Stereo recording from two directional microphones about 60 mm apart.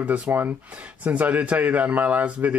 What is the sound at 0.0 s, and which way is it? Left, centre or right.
Speech, right.